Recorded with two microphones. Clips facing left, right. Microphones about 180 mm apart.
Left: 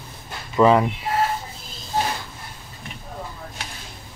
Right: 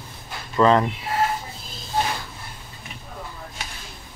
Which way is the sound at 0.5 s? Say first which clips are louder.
Left 2 dB; 5° left (ahead or behind).